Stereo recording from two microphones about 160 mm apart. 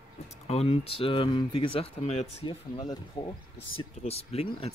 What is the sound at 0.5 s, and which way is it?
Speech, 40° left (ahead or behind).